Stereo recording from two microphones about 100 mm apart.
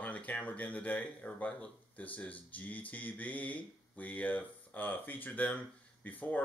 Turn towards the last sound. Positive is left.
turn(degrees=20)  # may be behind; listen again after turning